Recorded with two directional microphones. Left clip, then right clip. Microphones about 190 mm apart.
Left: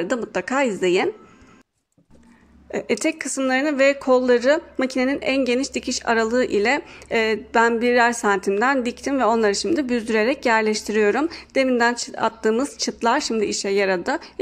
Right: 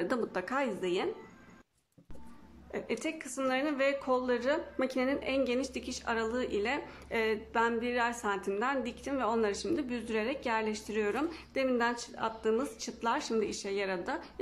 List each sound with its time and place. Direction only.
0.0 s a woman's voice: 15° left (ahead or behind)
2.7 s a woman's voice: 25° left (ahead or behind)